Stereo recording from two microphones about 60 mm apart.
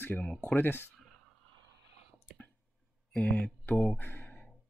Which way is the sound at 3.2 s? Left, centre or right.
Centre.